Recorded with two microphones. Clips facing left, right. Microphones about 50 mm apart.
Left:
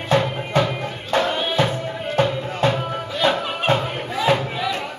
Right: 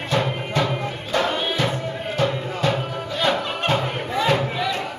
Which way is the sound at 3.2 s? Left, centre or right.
Centre.